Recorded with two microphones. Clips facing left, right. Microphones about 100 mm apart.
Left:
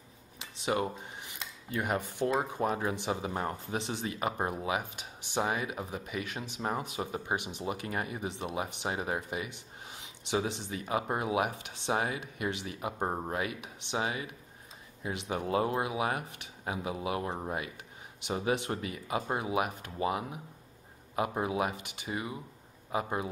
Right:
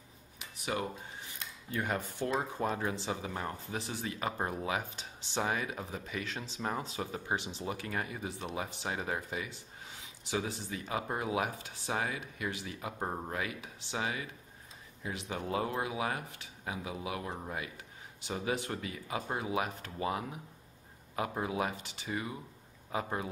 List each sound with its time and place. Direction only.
0.6 s speech: 25° left (ahead or behind)